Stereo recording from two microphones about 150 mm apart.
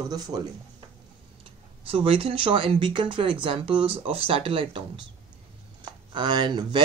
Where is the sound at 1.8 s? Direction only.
40° right (ahead or behind).